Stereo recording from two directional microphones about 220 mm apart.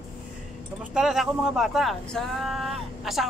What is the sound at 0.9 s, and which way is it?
Speech, centre (ahead or behind).